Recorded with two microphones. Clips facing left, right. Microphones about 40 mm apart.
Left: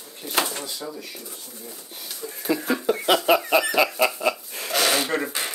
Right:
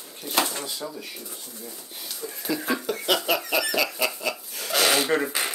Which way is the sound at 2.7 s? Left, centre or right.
Centre.